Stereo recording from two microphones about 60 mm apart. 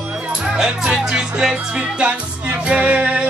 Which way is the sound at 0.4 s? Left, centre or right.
Centre.